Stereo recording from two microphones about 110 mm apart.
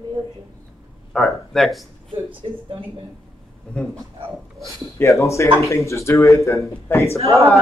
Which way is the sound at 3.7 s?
10° left (ahead or behind).